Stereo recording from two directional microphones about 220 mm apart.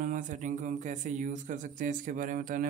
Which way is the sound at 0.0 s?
35° right (ahead or behind).